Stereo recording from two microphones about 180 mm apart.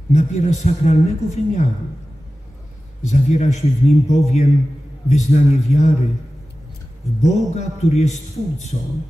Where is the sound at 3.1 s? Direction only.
40° left (ahead or behind).